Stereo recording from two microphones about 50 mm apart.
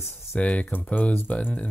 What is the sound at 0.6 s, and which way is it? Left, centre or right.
Speech, left.